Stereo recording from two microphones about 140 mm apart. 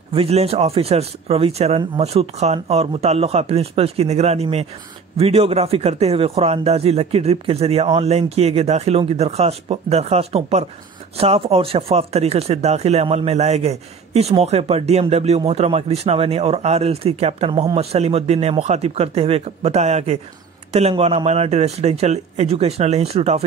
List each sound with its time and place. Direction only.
0.1 s speech: 45° right (ahead or behind)